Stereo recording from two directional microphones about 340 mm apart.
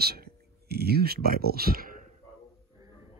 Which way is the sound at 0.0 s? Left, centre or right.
Right.